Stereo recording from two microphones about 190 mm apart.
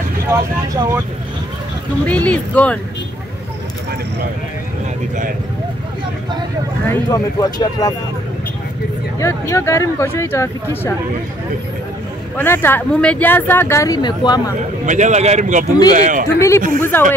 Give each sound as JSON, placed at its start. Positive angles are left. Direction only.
{"t": 0.3, "sound": "speech", "side_deg": -15}
{"t": 2.0, "sound": "speech", "side_deg": 5}
{"t": 6.9, "sound": "speech", "side_deg": 20}
{"t": 9.2, "sound": "speech", "side_deg": 15}
{"t": 12.4, "sound": "speech", "side_deg": 10}
{"t": 14.9, "sound": "a man's voice", "side_deg": -40}
{"t": 16.3, "sound": "speech", "side_deg": 15}